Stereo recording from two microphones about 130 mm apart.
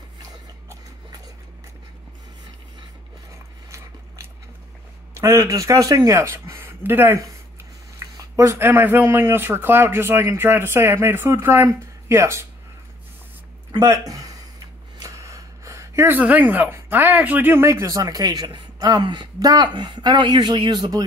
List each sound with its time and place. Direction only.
0.3 s a sound: 30° right (ahead or behind)
5.1 s speech: 25° right (ahead or behind)
13.7 s speech: 30° right (ahead or behind)